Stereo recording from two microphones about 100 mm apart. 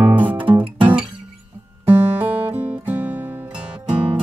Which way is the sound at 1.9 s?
20° right (ahead or behind).